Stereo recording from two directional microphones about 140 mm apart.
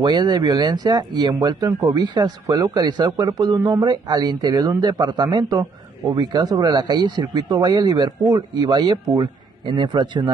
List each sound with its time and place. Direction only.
0.0 s speech: 30° right (ahead or behind)